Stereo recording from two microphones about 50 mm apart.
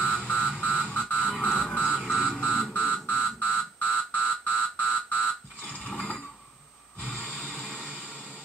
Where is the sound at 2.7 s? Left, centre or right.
Left.